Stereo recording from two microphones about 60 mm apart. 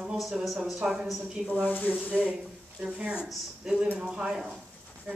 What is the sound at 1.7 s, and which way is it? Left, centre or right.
Speech, left.